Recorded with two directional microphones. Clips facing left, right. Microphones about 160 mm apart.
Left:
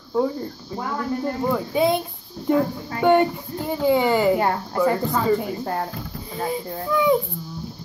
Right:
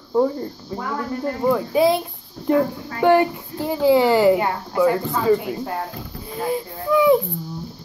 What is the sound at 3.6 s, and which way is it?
A child's voice, 5° right (ahead or behind).